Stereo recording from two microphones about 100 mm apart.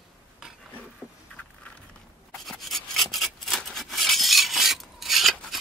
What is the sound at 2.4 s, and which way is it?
Rub, centre (ahead or behind).